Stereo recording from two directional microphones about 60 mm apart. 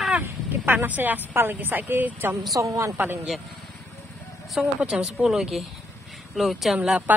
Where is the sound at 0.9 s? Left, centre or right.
Right.